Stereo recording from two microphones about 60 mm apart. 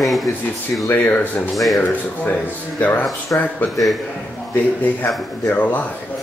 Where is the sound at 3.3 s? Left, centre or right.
Left.